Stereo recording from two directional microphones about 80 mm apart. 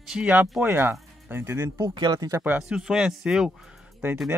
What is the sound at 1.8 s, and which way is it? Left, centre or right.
Speech, right.